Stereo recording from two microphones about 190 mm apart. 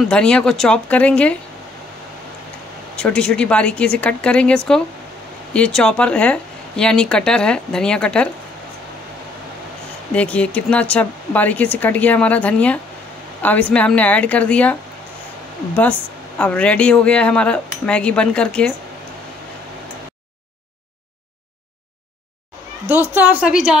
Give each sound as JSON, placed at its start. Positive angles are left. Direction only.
{"t": 0.1, "sound": "a woman's voice", "side_deg": 5}
{"t": 3.0, "sound": "a woman's voice", "side_deg": 5}
{"t": 10.1, "sound": "a woman's voice", "side_deg": 5}
{"t": 22.8, "sound": "a woman's voice", "side_deg": -10}